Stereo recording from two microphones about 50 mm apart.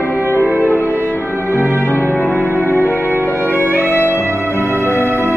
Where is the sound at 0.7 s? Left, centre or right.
Left.